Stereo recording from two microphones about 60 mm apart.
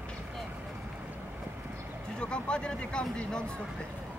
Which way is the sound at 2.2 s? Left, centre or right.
Centre.